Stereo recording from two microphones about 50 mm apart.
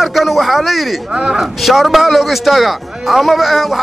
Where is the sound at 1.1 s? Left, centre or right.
Centre.